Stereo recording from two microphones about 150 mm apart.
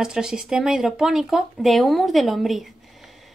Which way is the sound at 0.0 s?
5° right (ahead or behind).